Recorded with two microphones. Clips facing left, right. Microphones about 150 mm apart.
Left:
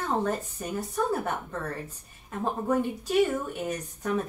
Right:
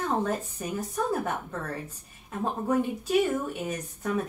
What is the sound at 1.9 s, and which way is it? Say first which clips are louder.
A woman's voice: even; 5° right (ahead or behind).